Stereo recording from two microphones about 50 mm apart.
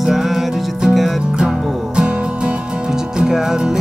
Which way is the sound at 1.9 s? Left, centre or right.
Centre.